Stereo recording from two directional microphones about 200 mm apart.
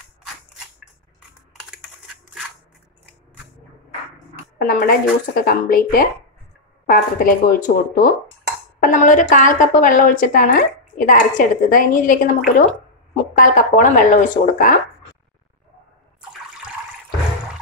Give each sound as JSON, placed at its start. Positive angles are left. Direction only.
{"t": 4.6, "sound": "a woman's voice", "side_deg": 45}